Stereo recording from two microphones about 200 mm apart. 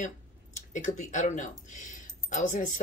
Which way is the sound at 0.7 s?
35° left (ahead or behind).